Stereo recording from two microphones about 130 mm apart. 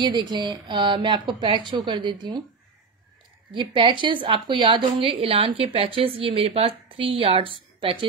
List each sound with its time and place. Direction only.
0.0 s a woman's voice: 35° right (ahead or behind)
3.5 s a woman's voice: 40° right (ahead or behind)